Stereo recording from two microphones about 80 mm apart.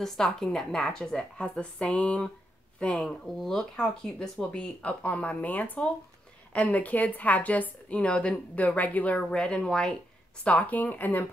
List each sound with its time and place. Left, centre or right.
0.0 s a woman's voice: centre; by 11.2 s left